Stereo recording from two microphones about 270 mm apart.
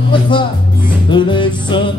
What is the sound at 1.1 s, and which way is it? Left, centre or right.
Music, centre.